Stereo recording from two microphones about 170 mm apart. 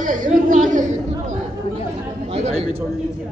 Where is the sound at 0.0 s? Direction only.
50° right (ahead or behind).